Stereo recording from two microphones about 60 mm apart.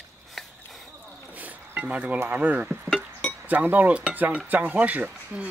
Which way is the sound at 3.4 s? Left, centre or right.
Right.